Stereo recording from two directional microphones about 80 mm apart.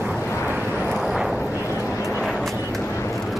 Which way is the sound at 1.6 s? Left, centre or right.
Left.